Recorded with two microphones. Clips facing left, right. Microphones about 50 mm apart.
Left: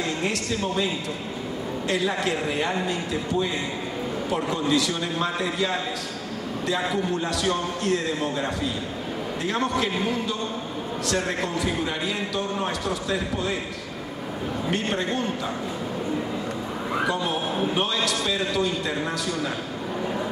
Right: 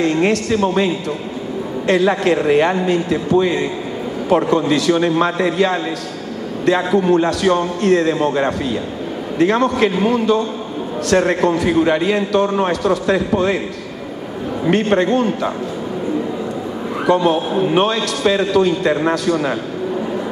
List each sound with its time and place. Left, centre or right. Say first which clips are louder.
0.0 s a man's voice: right 11 dB; right
1.9 s a man's voice: right 11 dB; right
14.7 s a man's voice: right 13 dB; right
17.0 s a man's voice: right 13 dB; right